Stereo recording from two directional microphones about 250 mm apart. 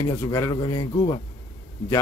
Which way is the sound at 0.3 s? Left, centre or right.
Centre.